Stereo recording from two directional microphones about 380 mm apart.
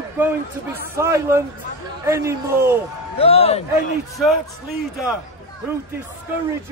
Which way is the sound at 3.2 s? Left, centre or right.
Centre.